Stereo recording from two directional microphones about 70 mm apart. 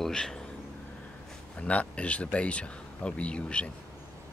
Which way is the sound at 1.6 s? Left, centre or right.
Centre.